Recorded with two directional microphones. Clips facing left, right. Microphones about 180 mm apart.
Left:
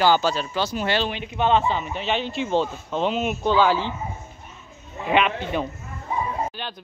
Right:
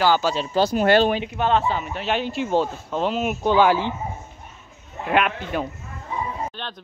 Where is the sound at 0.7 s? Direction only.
50° right (ahead or behind).